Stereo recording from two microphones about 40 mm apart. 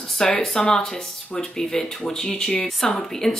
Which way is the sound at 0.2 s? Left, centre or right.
Centre.